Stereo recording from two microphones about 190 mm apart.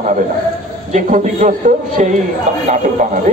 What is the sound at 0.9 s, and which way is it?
A man's voice, 45° right (ahead or behind).